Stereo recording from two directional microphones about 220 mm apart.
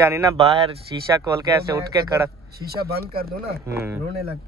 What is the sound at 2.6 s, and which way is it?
Speech, 45° right (ahead or behind).